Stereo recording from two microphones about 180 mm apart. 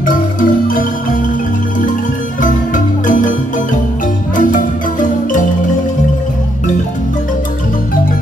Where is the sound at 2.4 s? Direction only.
45° left (ahead or behind).